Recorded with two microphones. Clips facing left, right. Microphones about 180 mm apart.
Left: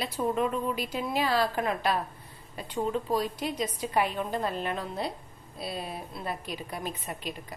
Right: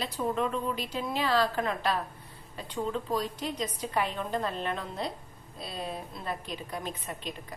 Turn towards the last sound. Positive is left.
turn(degrees=10)  # may be behind; listen again after turning